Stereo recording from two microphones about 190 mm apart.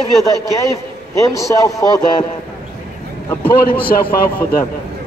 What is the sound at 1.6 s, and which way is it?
Speech, 15° left (ahead or behind).